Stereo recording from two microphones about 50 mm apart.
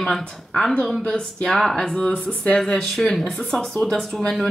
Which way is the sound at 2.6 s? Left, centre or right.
Centre.